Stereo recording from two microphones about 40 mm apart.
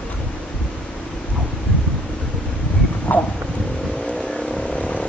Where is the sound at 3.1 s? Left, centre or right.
Left.